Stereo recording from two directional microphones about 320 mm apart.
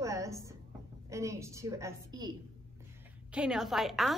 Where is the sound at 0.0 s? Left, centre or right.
Centre.